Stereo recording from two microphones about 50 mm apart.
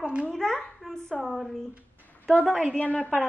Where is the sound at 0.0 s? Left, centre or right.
Right.